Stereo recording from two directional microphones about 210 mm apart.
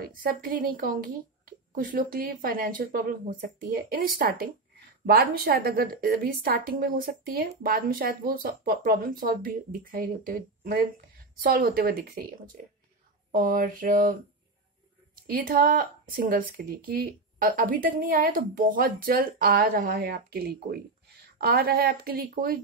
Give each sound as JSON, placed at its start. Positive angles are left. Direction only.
{"t": 0.0, "sound": "speech", "side_deg": -45}
{"t": 13.3, "sound": "mantra", "side_deg": -40}
{"t": 15.3, "sound": "speech", "side_deg": -45}